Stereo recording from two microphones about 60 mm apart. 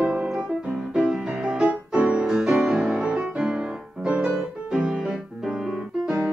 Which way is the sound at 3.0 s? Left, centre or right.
Centre.